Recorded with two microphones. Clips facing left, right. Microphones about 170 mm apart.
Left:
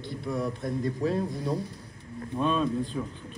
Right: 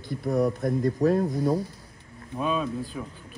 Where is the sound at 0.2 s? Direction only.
45° right (ahead or behind).